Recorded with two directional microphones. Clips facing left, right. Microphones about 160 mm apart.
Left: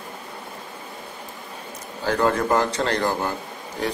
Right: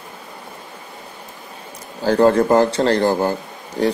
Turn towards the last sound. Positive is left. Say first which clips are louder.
# right 8 dB
turn(degrees=-35)  # may be behind; listen again after turning